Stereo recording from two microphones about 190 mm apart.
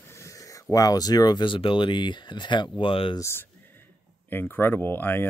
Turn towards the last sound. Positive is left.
turn(degrees=10)  # may be behind; listen again after turning